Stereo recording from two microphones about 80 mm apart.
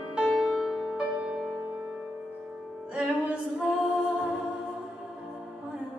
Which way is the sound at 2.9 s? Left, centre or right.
Centre.